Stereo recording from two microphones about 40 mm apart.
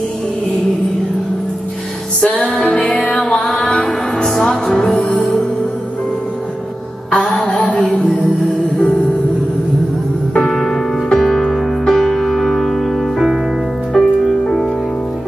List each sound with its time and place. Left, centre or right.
2.1 s music: left
7.1 s music: left
10.3 s music: centre